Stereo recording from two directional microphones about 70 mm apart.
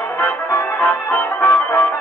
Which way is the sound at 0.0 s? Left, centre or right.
Left.